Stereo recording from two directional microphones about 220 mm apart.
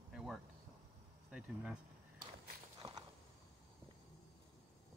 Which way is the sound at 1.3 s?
5° right (ahead or behind).